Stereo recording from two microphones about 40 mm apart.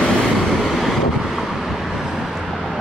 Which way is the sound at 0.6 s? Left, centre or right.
Centre.